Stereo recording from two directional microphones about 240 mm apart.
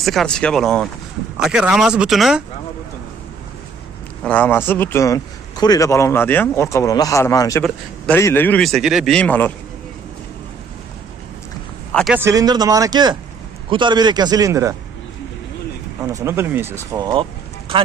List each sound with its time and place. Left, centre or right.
0.0 s a man's voice: centre
4.2 s a man's voice: centre
11.9 s a man's voice: centre
12.2 s speech: centre
16.0 s speech: centre